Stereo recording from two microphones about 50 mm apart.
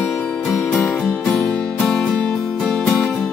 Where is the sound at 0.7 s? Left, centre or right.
Left.